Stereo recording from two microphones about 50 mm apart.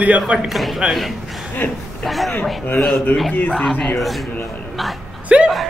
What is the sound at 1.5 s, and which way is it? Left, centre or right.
Speech, left.